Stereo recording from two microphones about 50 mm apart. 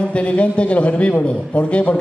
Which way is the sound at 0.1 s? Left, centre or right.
Left.